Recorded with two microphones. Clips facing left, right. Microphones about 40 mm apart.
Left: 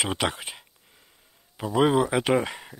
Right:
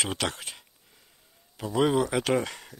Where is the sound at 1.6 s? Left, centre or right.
Centre.